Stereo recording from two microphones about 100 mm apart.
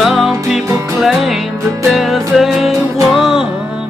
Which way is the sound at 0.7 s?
30° right (ahead or behind).